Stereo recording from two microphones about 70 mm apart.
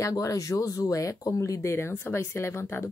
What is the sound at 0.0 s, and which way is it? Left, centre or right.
Speech, left.